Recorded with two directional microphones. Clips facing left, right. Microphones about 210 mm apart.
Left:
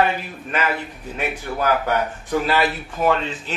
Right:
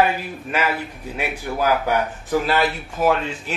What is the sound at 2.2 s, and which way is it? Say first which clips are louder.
Speech: even; centre (ahead or behind).